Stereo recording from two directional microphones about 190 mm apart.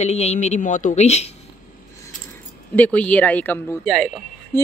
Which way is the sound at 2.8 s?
5° left (ahead or behind).